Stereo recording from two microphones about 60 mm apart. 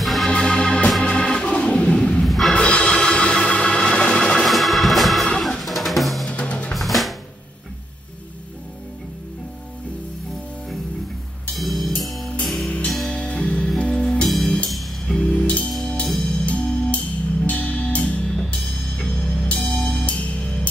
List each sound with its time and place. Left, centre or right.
0.0 s organ: centre
0.3 s organ: centre
2.2 s music: centre
2.5 s music: centre
4.5 s organ: centre
5.4 s drum: centre
6.2 s music: centre
6.7 s drum: centre
11.5 s music: centre; by 15.7 s left
16.1 s music: centre